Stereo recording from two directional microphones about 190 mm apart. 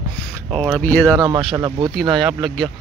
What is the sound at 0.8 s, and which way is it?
Speech, 10° left (ahead or behind).